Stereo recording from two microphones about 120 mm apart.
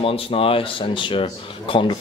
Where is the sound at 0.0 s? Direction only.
50° left (ahead or behind).